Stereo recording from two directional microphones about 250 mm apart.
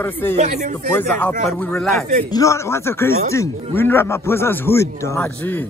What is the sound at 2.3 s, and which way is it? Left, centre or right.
Speech, centre.